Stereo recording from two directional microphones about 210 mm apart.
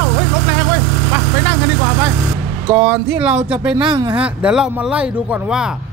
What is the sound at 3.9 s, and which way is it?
Speech, 20° right (ahead or behind).